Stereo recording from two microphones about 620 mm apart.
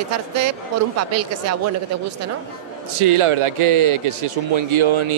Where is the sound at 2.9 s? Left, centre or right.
Right.